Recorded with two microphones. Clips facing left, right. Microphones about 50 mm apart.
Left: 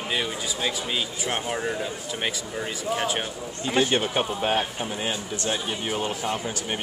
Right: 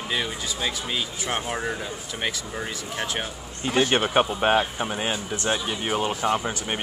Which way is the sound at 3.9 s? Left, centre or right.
Right.